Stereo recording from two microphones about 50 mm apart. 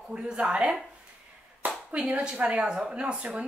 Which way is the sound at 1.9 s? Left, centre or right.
Right.